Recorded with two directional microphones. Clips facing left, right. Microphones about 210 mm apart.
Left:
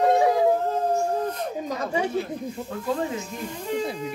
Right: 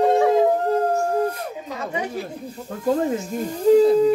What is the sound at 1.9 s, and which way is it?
Speech, 25° left (ahead or behind).